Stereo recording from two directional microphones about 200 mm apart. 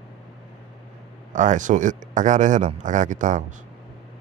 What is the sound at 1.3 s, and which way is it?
A man's voice, 40° right (ahead or behind).